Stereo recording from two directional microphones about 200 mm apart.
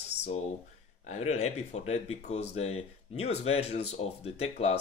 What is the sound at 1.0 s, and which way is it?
Speech, 35° left (ahead or behind).